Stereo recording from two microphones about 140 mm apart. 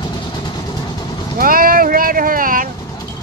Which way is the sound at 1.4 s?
90° right.